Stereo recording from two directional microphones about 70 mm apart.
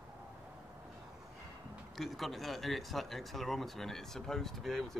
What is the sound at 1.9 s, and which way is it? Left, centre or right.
Speech, centre.